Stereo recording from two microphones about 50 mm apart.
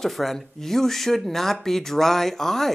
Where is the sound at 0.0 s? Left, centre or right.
Centre.